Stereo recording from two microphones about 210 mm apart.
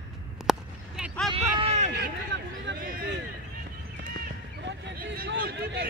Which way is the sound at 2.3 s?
55° right (ahead or behind).